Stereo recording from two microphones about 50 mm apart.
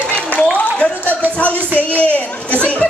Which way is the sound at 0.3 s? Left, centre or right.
Left.